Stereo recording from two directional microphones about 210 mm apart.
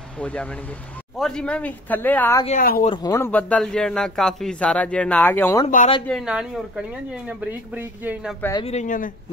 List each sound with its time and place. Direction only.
0.2 s a man's voice: 5° left (ahead or behind)
2.6 s speech: 45° left (ahead or behind)
2.9 s a man's voice: 15° left (ahead or behind)
6.0 s speech: centre (ahead or behind)
8.4 s a man's voice: 15° left (ahead or behind)
8.6 s speech: 35° left (ahead or behind)